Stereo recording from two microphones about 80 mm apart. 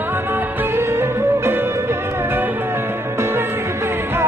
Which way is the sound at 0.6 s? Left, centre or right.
Right.